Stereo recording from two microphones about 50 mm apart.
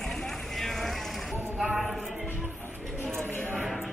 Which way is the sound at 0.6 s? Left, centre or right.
Centre.